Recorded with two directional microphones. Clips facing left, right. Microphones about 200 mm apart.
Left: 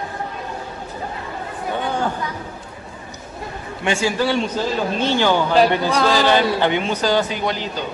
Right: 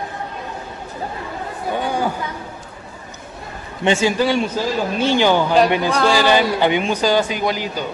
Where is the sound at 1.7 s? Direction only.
10° right (ahead or behind).